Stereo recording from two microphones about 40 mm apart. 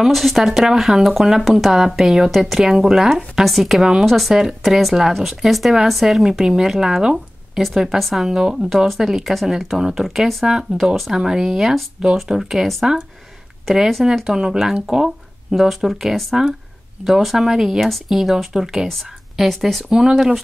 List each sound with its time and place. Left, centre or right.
0.0 s speech: centre
3.4 s speech: centre
4.3 s speech: centre
9.8 s speech: centre
10.0 s speech: centre
10.7 s speech: right; by 12.6 s centre
13.7 s speech: centre
14.2 s speech: centre
17.7 s speech: centre
18.0 s speech: centre
19.9 s speech: centre